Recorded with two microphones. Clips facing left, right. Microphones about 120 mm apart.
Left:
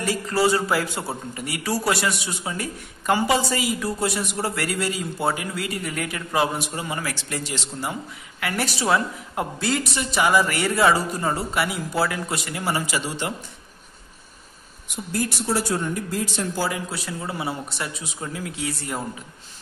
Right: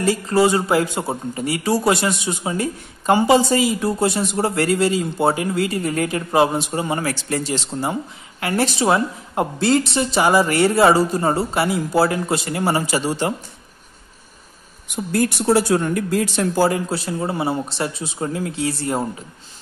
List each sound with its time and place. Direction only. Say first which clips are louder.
0.0 s a man's voice: right 5 dB; 25° right (ahead or behind)
15.1 s speech: right 8 dB; 65° right (ahead or behind)
16.6 s a man's voice: right 8 dB; 35° right (ahead or behind)